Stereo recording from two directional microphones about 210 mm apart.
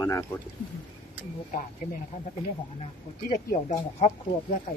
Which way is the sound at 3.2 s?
40° left (ahead or behind).